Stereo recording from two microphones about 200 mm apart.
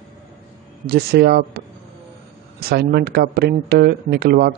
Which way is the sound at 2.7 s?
55° right (ahead or behind).